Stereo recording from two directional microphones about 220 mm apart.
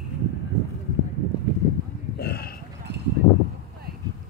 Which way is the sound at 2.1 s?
45° left (ahead or behind).